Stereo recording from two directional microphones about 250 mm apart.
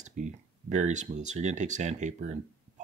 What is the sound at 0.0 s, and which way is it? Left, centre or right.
Speech, right.